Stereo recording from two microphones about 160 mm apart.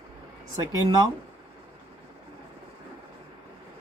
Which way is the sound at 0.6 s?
20° right (ahead or behind).